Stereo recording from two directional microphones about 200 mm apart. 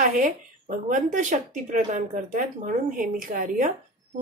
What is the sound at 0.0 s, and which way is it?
A woman's voice, 40° right (ahead or behind).